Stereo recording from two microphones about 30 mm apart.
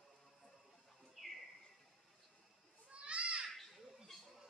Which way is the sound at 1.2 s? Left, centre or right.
Centre.